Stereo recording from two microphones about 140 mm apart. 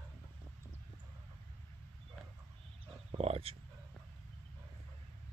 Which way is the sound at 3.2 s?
45° right (ahead or behind).